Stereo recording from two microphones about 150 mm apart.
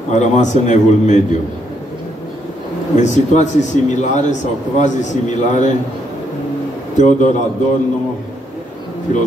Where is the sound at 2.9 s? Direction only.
55° left (ahead or behind).